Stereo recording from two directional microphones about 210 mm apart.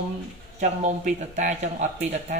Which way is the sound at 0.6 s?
35° right (ahead or behind).